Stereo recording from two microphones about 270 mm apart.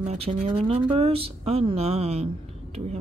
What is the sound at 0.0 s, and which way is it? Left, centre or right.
Speech, right.